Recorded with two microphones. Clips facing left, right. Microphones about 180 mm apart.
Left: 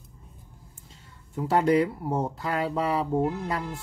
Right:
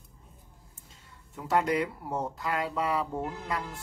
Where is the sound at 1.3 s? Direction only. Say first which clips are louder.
Left 5 dB; 35° left (ahead or behind).